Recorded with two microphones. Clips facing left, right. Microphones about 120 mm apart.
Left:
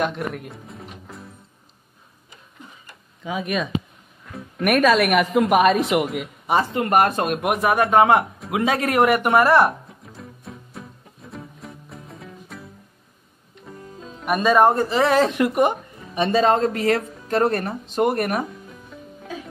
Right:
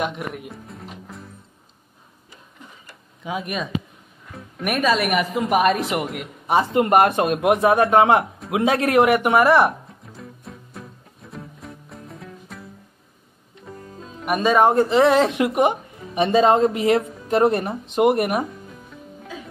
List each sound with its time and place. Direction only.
0.0 s music: 5° right (ahead or behind)
4.3 s speech: centre (ahead or behind)
6.7 s speech: 25° right (ahead or behind)
10.1 s music: centre (ahead or behind)
14.2 s speech: 15° right (ahead or behind)